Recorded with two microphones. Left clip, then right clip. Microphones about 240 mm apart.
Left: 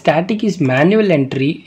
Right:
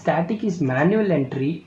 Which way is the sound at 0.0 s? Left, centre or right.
Left.